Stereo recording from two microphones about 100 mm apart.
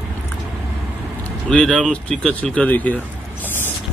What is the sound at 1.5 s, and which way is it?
Speech, 10° left (ahead or behind).